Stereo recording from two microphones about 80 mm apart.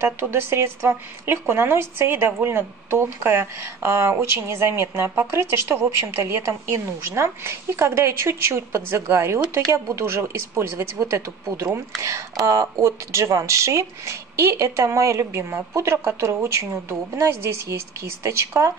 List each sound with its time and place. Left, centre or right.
0.0 s a woman's voice: right
18.2 s a woman's voice: right